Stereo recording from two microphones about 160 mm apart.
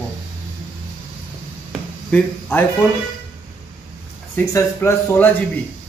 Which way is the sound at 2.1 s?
10° left (ahead or behind).